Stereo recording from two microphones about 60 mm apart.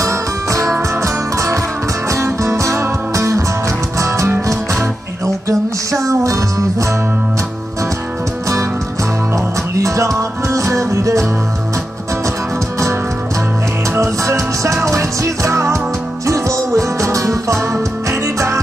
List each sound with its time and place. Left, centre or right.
0.0 s music: right
5.2 s music: right
9.3 s music: right
13.9 s music: right